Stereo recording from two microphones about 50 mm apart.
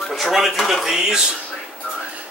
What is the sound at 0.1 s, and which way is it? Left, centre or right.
Speech, centre.